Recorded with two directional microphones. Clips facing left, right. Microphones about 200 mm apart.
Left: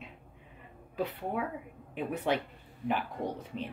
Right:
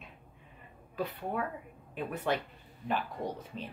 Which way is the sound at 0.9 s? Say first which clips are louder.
Left 1 dB; 15° left (ahead or behind).